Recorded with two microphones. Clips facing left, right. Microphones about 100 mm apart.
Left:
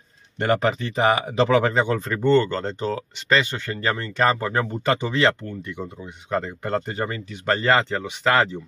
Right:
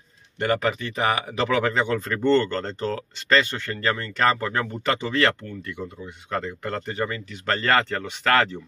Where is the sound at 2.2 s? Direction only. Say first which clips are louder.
Left 2 dB; 10° left (ahead or behind).